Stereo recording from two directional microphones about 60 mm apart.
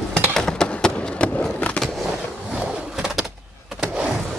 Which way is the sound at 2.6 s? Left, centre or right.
Centre.